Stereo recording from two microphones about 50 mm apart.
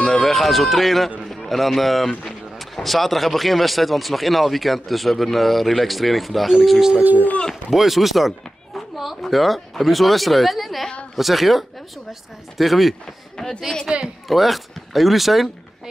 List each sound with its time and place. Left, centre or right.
0.0 s speech: centre
7.0 s speech: right
7.7 s a woman's voice: centre
13.8 s speech: centre
14.2 s speech: centre